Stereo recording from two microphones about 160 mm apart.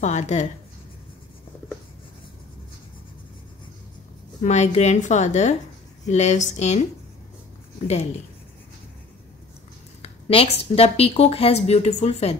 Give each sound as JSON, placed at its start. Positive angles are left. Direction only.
{"t": 0.0, "sound": "a woman's voice", "side_deg": 45}
{"t": 4.4, "sound": "a woman's voice", "side_deg": 45}
{"t": 10.0, "sound": "a woman's voice", "side_deg": 40}